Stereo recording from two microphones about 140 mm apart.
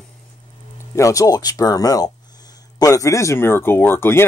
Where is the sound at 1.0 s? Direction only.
25° left (ahead or behind).